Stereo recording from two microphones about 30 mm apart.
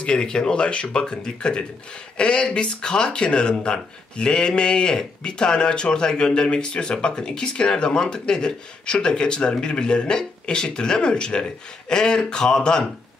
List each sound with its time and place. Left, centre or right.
0.0 s speech: left